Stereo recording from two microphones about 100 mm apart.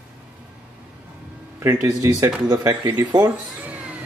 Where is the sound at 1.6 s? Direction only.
30° right (ahead or behind).